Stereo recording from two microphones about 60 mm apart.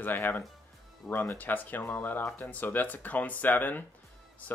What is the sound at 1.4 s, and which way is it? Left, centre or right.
Speech, left.